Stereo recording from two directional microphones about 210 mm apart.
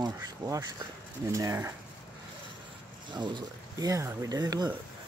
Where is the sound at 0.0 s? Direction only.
20° right (ahead or behind).